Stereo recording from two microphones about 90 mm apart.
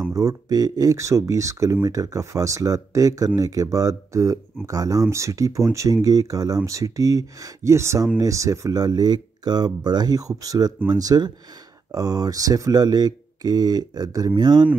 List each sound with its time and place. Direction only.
0.1 s speech: 40° right (ahead or behind)